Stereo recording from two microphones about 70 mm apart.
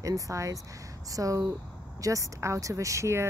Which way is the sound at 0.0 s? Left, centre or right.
Right.